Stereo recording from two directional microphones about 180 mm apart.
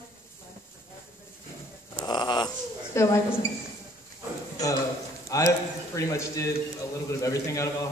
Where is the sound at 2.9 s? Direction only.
15° left (ahead or behind).